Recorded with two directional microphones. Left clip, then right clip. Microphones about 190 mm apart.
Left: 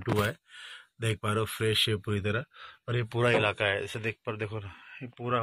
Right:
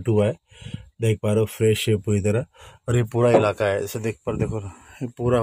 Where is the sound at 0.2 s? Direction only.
Centre (ahead or behind); by 4.6 s 20° right (ahead or behind).